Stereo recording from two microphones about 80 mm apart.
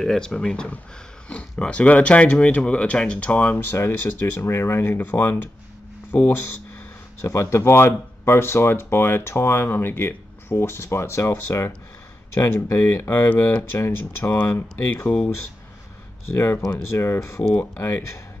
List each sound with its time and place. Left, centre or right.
0.0 s speech: centre
3.7 s speech: left
14.4 s speech: left
16.6 s speech: left
17.0 s speech: left